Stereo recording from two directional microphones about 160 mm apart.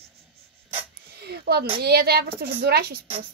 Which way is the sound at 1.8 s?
90° right.